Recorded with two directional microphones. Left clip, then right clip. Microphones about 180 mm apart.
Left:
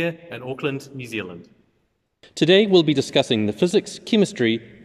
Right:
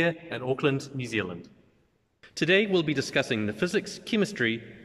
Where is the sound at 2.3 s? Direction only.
25° left (ahead or behind).